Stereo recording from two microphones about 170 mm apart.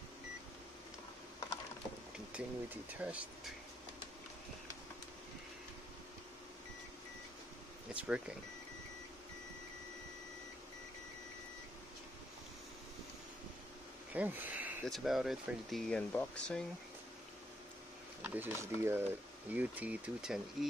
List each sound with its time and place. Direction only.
2.3 s speech: 10° right (ahead or behind)
7.9 s speech: 5° right (ahead or behind)
14.1 s a sound: 10° right (ahead or behind)
14.9 s speech: centre (ahead or behind)
18.2 s speech: 10° right (ahead or behind)